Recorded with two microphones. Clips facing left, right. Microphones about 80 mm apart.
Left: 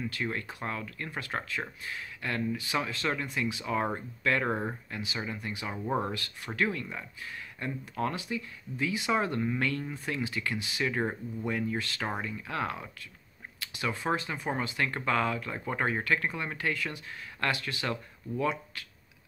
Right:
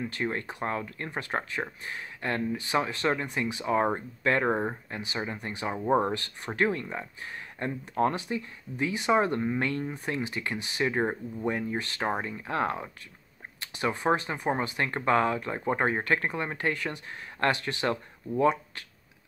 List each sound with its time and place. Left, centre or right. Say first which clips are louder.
0.0 s speech: right 3 dB; right